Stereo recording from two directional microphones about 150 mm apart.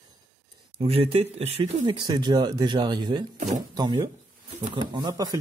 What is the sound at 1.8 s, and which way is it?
Speech, 30° right (ahead or behind).